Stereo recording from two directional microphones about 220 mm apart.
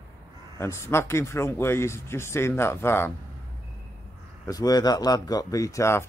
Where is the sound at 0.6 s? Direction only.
10° left (ahead or behind).